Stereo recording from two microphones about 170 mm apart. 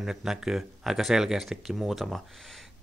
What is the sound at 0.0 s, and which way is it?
Speech, 5° right (ahead or behind).